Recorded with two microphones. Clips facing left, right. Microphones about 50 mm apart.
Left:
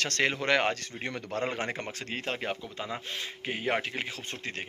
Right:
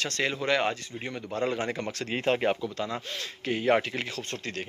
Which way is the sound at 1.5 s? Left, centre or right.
Left.